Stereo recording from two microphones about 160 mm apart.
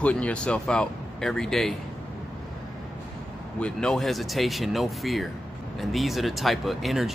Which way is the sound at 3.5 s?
5° left (ahead or behind).